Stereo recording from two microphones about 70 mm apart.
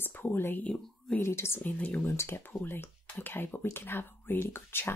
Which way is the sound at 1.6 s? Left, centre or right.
Left.